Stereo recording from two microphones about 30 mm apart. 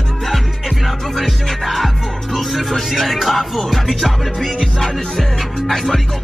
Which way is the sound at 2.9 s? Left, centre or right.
Centre.